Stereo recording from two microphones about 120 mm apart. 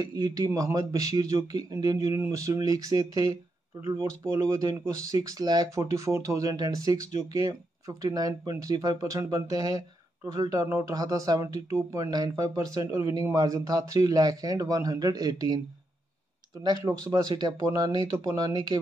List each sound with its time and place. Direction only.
0.0 s speech: 30° right (ahead or behind)